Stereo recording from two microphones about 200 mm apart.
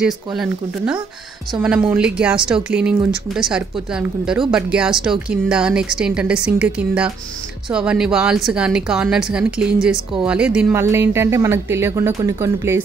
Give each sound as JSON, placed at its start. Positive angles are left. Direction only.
{"t": 0.0, "sound": "a woman's voice", "side_deg": -5}